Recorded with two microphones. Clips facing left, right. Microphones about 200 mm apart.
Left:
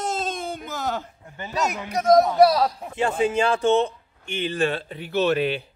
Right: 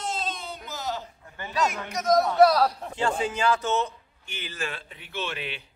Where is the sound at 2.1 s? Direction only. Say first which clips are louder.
Left 2 dB; 15° left (ahead or behind).